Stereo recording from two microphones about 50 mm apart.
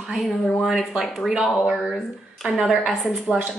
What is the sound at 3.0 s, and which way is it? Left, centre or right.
Speech, centre.